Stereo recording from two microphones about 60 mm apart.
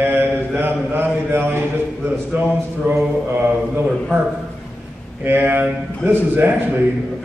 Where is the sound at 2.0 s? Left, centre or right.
Right.